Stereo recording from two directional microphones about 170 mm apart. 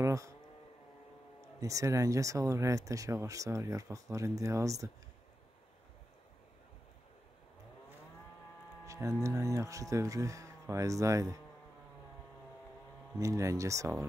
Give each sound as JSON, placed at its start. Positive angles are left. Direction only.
{"t": 0.0, "sound": "vehicle", "side_deg": -20}
{"t": 1.4, "sound": "speech", "side_deg": -20}
{"t": 8.8, "sound": "speech", "side_deg": -20}
{"t": 13.2, "sound": "speech", "side_deg": -20}